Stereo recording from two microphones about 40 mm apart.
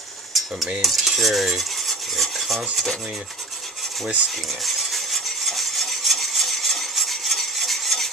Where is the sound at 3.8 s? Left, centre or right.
Centre.